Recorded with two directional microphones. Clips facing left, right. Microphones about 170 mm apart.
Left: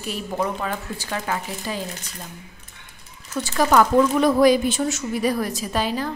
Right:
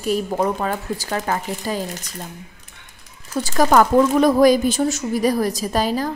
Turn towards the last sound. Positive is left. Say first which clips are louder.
# right 4 dB
turn(degrees=-40)  # may be behind; listen again after turning